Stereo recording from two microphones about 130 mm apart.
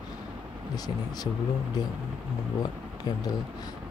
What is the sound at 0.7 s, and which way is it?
Speech, 30° left (ahead or behind).